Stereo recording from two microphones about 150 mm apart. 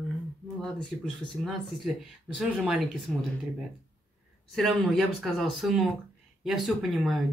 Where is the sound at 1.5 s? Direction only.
Centre (ahead or behind).